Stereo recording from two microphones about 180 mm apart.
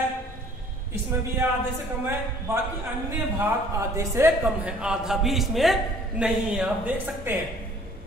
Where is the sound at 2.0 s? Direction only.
15° right (ahead or behind).